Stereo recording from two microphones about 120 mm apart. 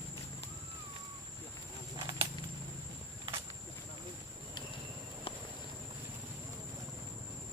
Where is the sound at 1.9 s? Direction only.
40° right (ahead or behind).